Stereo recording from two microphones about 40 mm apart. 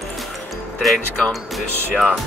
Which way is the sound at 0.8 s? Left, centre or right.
Centre.